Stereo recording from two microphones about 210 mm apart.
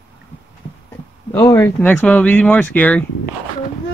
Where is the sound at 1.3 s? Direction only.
10° left (ahead or behind).